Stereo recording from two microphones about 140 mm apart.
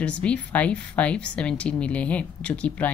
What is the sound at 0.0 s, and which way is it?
A woman's voice, 10° left (ahead or behind).